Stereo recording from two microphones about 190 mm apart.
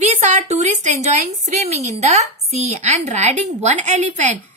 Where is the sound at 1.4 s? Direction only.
35° right (ahead or behind).